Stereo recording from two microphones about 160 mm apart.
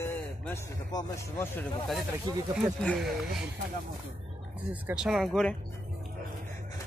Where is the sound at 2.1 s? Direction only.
15° right (ahead or behind).